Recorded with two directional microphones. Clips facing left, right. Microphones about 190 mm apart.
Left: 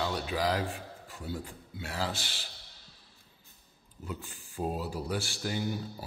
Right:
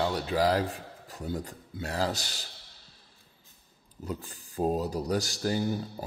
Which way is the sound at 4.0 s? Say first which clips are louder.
Right 4 dB; 40° right (ahead or behind).